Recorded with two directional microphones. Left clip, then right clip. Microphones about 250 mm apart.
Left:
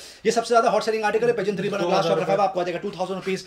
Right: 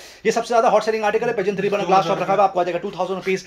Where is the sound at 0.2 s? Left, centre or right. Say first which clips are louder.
Right 2 dB; centre.